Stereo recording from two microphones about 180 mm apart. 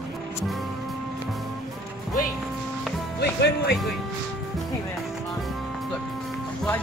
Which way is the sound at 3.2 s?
65° left (ahead or behind).